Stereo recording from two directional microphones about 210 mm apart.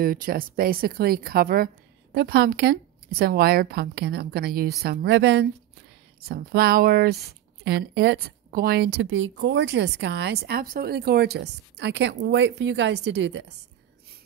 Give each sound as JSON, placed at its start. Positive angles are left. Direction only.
{"t": 0.0, "sound": "speech", "side_deg": -45}